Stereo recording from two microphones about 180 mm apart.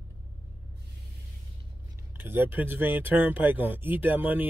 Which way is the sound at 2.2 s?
10° right (ahead or behind).